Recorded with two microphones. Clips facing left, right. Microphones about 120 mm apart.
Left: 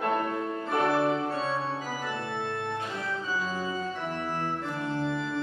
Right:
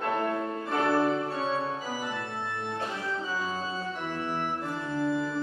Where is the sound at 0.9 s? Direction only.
20° left (ahead or behind).